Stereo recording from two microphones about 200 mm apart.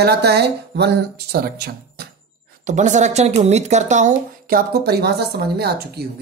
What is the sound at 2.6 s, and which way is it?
Speech, 35° right (ahead or behind).